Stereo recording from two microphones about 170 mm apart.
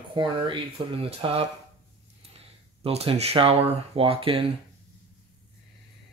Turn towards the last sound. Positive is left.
turn(degrees=-35)  # may be behind; listen again after turning